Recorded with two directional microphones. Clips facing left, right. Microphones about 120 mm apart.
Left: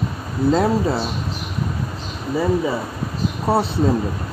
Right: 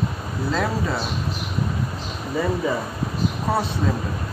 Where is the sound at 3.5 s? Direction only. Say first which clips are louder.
Left 5 dB; 30° left (ahead or behind).